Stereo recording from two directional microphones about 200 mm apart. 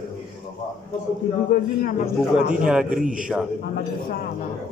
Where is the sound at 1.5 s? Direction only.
45° left (ahead or behind).